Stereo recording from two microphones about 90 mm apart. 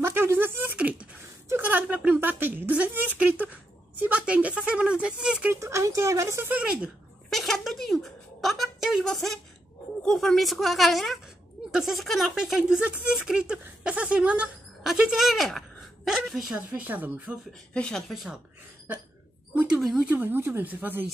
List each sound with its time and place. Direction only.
0.0 s a sound: 25° right (ahead or behind); by 5.5 s 10° right (ahead or behind)
5.5 s speech: 35° right (ahead or behind)
6.5 s speech: 15° right (ahead or behind)
7.2 s a sound: 5° left (ahead or behind)
10.0 s a woman's voice: 5° left (ahead or behind)
16.7 s speech: 20° right (ahead or behind)
17.5 s a woman's voice: 10° left (ahead or behind)
19.5 s speech: 15° right (ahead or behind)
19.8 s a woman's voice: centre (ahead or behind)
20.1 s speech: 20° right (ahead or behind)